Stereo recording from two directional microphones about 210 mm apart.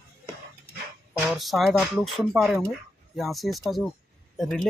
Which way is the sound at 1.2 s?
Centre (ahead or behind).